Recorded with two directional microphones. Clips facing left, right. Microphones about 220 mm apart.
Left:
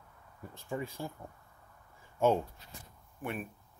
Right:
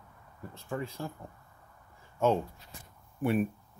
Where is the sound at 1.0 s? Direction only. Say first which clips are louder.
Right 2 dB; 15° left (ahead or behind).